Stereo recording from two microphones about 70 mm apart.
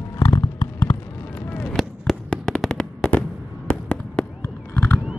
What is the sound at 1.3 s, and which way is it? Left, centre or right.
Vehicle, left.